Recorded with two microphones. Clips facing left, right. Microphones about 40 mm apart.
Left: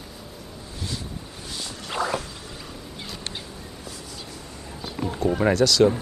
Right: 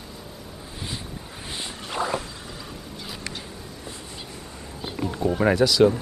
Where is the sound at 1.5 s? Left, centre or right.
Right.